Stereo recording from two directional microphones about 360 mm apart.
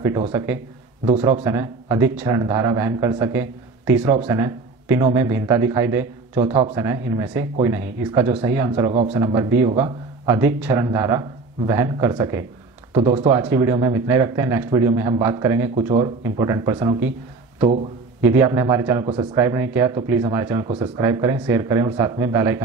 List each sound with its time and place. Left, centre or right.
0.0 s a man's voice: centre
18.2 s a man's voice: centre